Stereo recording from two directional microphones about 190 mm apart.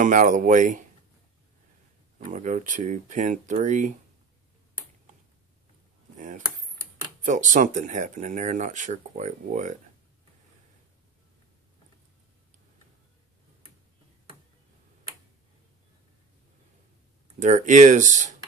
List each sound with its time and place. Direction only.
0.0 s speech: 40° right (ahead or behind)
2.1 s speech: 40° right (ahead or behind)
6.1 s speech: 40° right (ahead or behind)
17.4 s speech: 40° right (ahead or behind)